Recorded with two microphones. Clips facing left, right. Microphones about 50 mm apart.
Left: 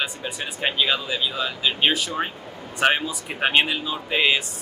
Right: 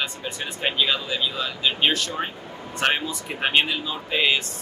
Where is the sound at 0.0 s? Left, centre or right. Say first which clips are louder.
Left 1 dB; centre.